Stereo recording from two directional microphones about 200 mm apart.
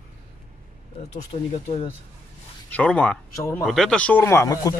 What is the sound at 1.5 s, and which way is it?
Speech, 35° left (ahead or behind).